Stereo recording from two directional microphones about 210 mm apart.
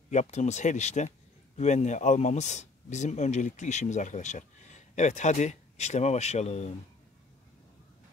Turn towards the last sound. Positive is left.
turn(degrees=30)  # may be behind; listen again after turning